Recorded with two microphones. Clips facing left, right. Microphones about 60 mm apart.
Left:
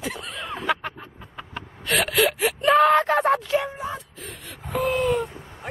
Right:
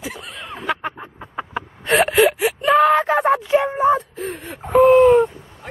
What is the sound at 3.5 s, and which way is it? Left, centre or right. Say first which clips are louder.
Speech: right 10 dB; right.